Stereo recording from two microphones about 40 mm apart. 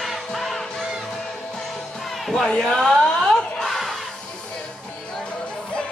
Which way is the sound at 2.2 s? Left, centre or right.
Centre.